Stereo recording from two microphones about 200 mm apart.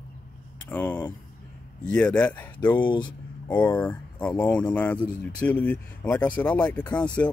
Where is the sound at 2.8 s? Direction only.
25° left (ahead or behind).